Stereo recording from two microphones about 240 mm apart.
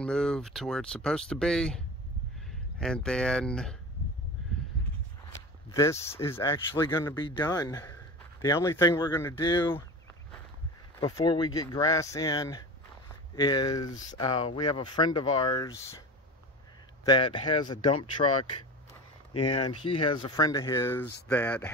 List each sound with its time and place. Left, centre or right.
0.0 s speech: centre
2.8 s speech: centre
5.7 s speech: centre
11.0 s speech: centre
17.0 s speech: centre
19.4 s speech: centre